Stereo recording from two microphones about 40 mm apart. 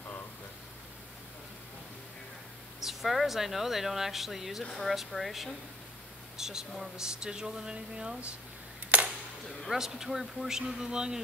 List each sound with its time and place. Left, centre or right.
2.8 s speech: centre
6.3 s a sound: centre
7.0 s speech: centre
8.9 s camera: right
9.7 s speech: centre